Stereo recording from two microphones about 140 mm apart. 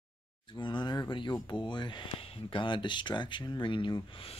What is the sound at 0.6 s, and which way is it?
Speech, 35° left (ahead or behind).